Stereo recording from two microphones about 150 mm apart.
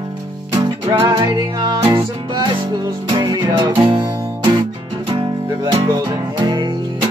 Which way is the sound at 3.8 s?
30° right (ahead or behind).